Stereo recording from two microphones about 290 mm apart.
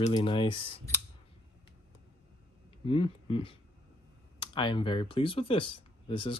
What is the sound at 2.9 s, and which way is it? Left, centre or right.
Speech, centre.